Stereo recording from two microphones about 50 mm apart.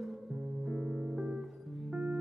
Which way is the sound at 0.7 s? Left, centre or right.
Centre.